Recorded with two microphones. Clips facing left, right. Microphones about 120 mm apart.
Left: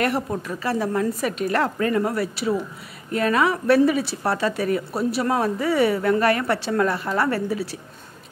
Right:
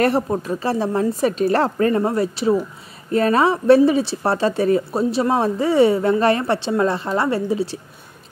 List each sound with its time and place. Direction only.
0.0 s speech: 30° right (ahead or behind)